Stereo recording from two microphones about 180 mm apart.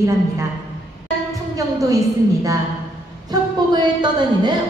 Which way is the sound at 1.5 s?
20° right (ahead or behind).